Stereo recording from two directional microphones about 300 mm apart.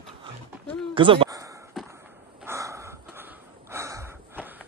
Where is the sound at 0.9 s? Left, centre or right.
Centre.